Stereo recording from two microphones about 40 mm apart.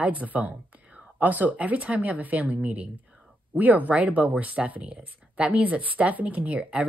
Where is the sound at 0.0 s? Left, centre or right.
Right.